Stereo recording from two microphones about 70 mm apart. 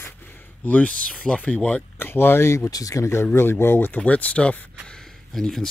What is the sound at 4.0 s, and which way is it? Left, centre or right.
Speech, centre.